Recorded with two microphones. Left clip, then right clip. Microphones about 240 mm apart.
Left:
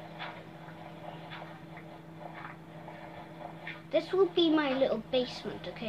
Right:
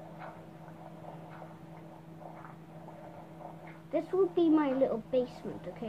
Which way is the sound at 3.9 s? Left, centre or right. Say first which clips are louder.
Left 2 dB; right.